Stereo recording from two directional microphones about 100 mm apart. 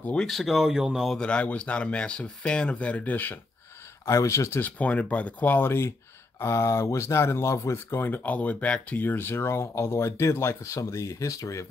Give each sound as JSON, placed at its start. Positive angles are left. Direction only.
{"t": 0.0, "sound": "speech", "side_deg": 10}
{"t": 1.1, "sound": "speech", "side_deg": 10}
{"t": 4.0, "sound": "speech", "side_deg": 30}
{"t": 4.6, "sound": "speech", "side_deg": 15}